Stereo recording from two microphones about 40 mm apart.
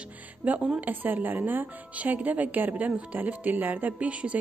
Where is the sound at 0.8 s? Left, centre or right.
Right.